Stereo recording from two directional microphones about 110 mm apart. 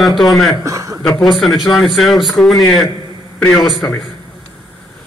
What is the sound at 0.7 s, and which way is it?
Chuckle, 30° right (ahead or behind).